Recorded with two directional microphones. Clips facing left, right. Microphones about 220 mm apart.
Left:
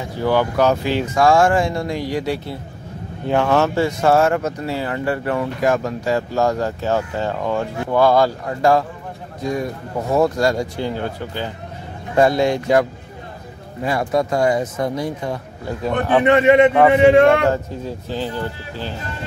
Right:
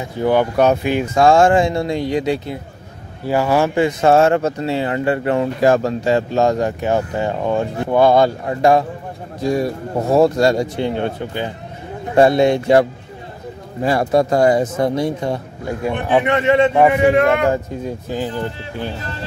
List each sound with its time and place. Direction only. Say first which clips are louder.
0.2 s speech: right 2 dB; 20° right (ahead or behind)
3.3 s speech: right 1 dB; 10° right (ahead or behind); by 12.8 s 25° right (ahead or behind)
13.8 s speech: right 4 dB; 35° right (ahead or behind)
15.8 s speech: even; 15° right (ahead or behind)
16.3 s a man's voice: left 5 dB; 20° left (ahead or behind)
18.1 s speech: right 1 dB; 15° right (ahead or behind)